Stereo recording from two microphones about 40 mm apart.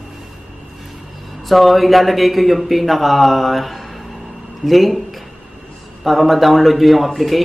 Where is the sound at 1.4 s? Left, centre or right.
Centre.